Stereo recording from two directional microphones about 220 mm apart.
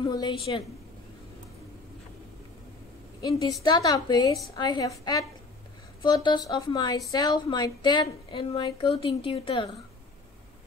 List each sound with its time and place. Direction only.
0.0 s a woman's voice: 20° left (ahead or behind)
3.2 s a woman's voice: 15° left (ahead or behind)